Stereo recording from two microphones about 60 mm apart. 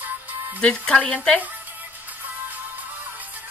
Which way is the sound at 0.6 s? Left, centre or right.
Centre.